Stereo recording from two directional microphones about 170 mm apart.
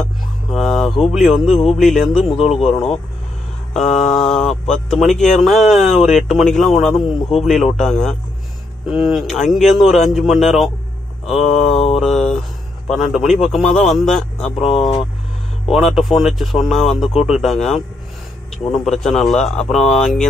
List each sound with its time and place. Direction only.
0.5 s speech: centre (ahead or behind)
11.6 s mantra: 35° left (ahead or behind)
12.0 s speech: centre (ahead or behind)